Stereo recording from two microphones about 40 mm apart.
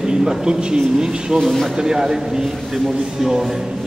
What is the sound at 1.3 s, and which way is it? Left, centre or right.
Speech, centre.